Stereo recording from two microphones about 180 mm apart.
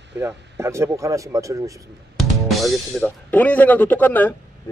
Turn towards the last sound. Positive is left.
turn(degrees=10)  # may be behind; listen again after turning